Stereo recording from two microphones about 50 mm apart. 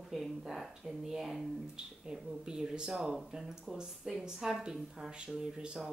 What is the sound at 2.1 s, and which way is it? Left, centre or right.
Speech, centre.